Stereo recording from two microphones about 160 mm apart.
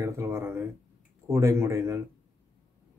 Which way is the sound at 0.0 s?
20° right (ahead or behind).